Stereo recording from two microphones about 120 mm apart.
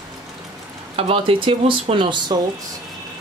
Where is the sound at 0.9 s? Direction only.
50° right (ahead or behind).